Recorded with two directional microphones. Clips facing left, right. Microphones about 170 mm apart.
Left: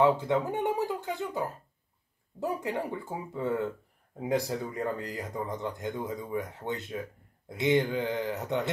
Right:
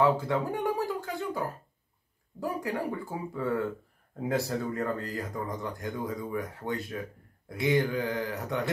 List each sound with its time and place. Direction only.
0.0 s speech: 20° left (ahead or behind)
2.4 s speech: 20° left (ahead or behind)